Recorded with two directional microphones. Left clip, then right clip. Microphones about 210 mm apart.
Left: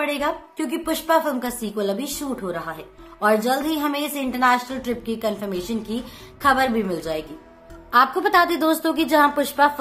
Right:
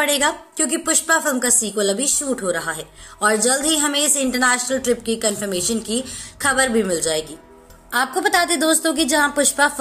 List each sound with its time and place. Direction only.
0.0 s a woman's voice: 5° right (ahead or behind)